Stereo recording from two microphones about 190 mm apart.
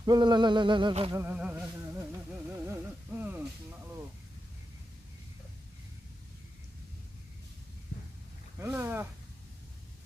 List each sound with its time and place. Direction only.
0.0 s bird: 20° right (ahead or behind)
1.1 s a sound: 10° right (ahead or behind)
8.5 s speech: 15° right (ahead or behind)